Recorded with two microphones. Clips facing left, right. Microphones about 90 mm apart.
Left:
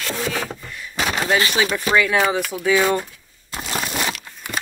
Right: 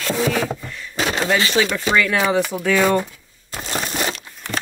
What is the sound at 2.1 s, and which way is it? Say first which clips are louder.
Speech: right 1 dB; centre (ahead or behind).